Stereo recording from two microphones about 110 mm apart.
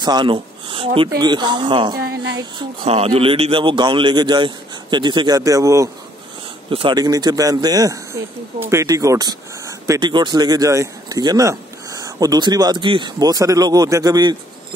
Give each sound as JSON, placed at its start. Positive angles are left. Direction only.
{"t": 0.0, "sound": "speech", "side_deg": -45}
{"t": 1.1, "sound": "a man's voice", "side_deg": -40}
{"t": 2.9, "sound": "a man's voice", "side_deg": -60}
{"t": 6.7, "sound": "speech", "side_deg": -50}